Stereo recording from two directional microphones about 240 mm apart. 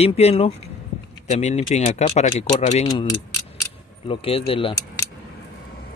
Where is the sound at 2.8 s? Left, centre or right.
Centre.